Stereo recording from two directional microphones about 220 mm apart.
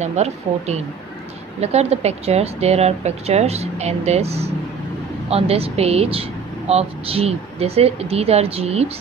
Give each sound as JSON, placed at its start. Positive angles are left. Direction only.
{"t": 0.0, "sound": "speech", "side_deg": -30}